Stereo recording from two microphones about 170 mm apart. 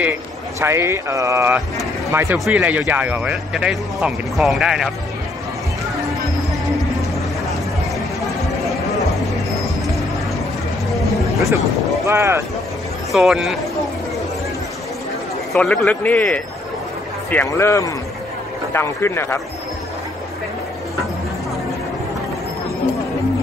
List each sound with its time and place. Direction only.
0.6 s speech: 15° right (ahead or behind)
2.3 s speech: 5° right (ahead or behind)
11.3 s speech: 20° right (ahead or behind)
13.1 s speech: centre (ahead or behind)
15.5 s a man's voice: 5° left (ahead or behind)
17.5 s a man's voice: 15° left (ahead or behind)